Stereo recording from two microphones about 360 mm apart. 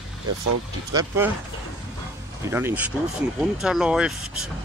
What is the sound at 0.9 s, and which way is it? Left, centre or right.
Speech, centre.